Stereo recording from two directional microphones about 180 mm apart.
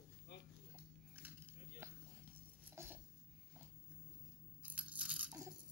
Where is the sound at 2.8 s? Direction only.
15° right (ahead or behind).